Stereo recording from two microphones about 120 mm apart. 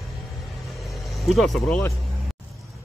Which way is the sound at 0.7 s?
Centre (ahead or behind).